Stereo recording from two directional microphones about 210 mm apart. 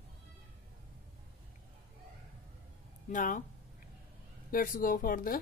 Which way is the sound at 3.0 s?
40° left (ahead or behind).